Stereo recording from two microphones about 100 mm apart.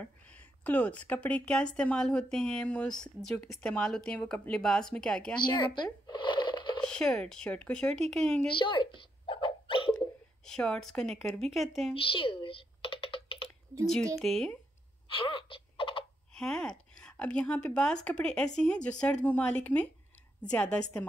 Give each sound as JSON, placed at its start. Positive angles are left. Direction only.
{"t": 0.0, "sound": "a woman's voice", "side_deg": 15}
{"t": 5.4, "sound": "a woman's voice", "side_deg": 50}
{"t": 6.1, "sound": "a sound", "side_deg": 50}
{"t": 6.9, "sound": "a woman's voice", "side_deg": 10}
{"t": 8.5, "sound": "dog", "side_deg": 55}
{"t": 10.4, "sound": "speech", "side_deg": 5}
{"t": 11.9, "sound": "computer keyboard", "side_deg": 65}
{"t": 13.8, "sound": "speech", "side_deg": 5}
{"t": 15.0, "sound": "a sound", "side_deg": 60}
{"t": 16.3, "sound": "a woman's voice", "side_deg": 5}